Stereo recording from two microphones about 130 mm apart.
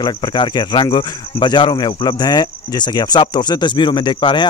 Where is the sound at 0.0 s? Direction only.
35° left (ahead or behind).